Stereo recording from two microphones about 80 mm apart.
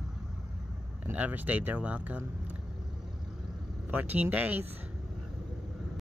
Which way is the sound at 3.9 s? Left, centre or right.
Right.